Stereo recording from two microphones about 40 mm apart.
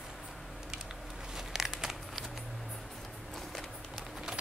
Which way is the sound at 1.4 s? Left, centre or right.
Centre.